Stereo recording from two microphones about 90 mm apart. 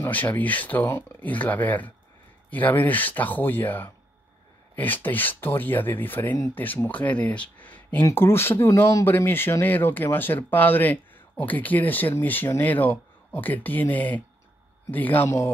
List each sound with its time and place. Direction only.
0.1 s speech: 20° left (ahead or behind)
15.2 s a man's voice: 30° left (ahead or behind)